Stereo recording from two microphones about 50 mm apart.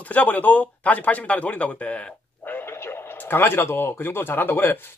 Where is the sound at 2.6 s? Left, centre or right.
Left.